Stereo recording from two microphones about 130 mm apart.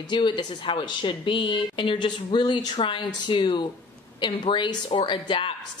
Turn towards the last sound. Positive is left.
turn(degrees=40)  # may be behind; listen again after turning